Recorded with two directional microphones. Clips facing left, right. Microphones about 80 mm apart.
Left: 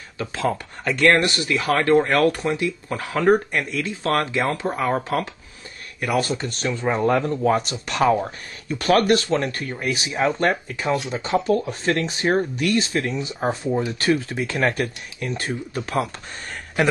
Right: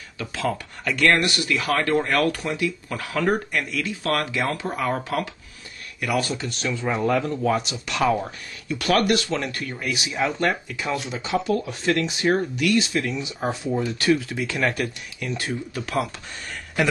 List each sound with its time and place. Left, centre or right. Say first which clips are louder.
0.2 s speech: left 3 dB; left